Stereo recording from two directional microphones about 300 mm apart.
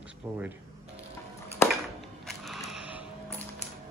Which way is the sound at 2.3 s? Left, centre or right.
Centre.